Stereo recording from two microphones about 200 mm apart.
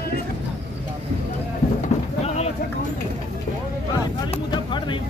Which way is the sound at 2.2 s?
30° left (ahead or behind).